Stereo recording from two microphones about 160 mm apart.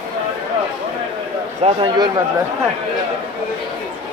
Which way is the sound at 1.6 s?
30° right (ahead or behind).